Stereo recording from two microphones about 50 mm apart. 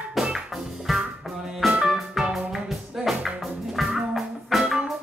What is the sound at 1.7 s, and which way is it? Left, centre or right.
Music, centre.